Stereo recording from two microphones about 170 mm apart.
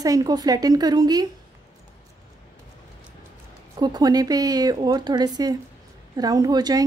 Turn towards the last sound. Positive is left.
turn(degrees=-25)  # may be behind; listen again after turning